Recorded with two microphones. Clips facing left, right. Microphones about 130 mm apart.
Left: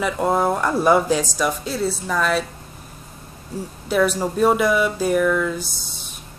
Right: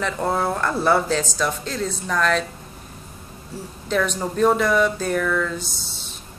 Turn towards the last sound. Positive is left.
turn(degrees=10)  # may be behind; listen again after turning